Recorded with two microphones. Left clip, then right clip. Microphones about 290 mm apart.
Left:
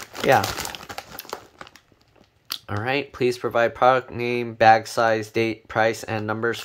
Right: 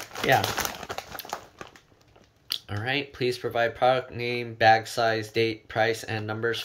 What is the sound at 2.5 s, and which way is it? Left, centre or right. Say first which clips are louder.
Speech: left 4 dB; centre.